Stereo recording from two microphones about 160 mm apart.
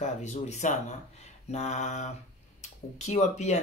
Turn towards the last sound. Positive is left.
turn(degrees=45)  # may be behind; listen again after turning